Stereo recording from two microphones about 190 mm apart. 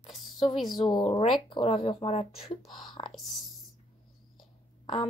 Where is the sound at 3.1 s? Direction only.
Centre (ahead or behind).